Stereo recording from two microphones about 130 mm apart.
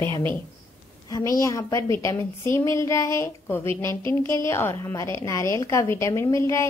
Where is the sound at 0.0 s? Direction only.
15° left (ahead or behind).